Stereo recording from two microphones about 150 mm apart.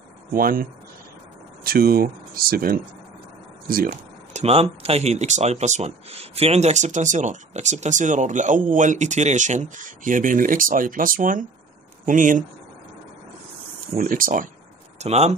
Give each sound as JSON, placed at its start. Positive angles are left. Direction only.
{"t": 0.3, "sound": "speech", "side_deg": -75}
{"t": 4.3, "sound": "speech", "side_deg": -45}
{"t": 13.9, "sound": "speech", "side_deg": -65}
{"t": 15.0, "sound": "speech", "side_deg": -45}